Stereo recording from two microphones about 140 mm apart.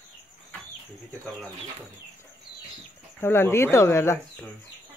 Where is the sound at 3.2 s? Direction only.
15° left (ahead or behind).